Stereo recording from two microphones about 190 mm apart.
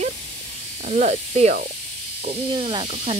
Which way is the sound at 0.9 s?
35° right (ahead or behind).